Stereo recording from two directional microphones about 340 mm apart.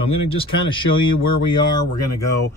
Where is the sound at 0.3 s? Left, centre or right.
Centre.